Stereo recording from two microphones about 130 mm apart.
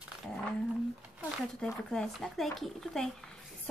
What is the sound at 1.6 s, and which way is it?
A woman's voice, 5° left (ahead or behind).